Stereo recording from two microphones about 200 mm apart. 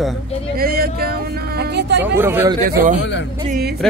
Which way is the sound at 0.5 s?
50° right (ahead or behind).